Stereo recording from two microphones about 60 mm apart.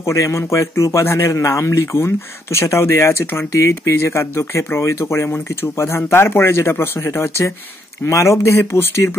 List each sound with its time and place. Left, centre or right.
0.0 s a man's voice: left